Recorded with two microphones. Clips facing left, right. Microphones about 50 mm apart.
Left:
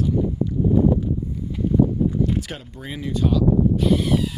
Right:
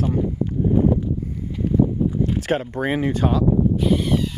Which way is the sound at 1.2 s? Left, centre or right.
Right.